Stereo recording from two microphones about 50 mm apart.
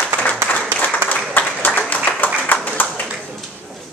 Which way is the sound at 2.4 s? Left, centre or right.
Left.